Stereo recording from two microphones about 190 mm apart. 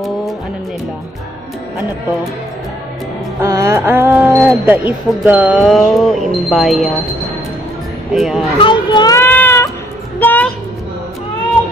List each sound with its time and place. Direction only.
3.4 s speech: 15° right (ahead or behind); by 6.9 s centre (ahead or behind)
8.1 s speech: centre (ahead or behind)
8.5 s baby cry: 25° left (ahead or behind)
10.1 s a sound: 10° left (ahead or behind)